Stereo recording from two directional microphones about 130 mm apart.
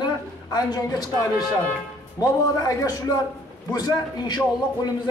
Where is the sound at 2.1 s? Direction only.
30° left (ahead or behind).